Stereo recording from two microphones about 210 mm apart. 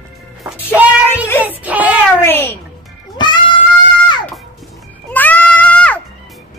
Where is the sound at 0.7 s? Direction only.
5° right (ahead or behind).